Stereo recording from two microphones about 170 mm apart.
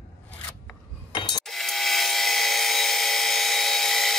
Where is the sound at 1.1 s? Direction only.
25° left (ahead or behind).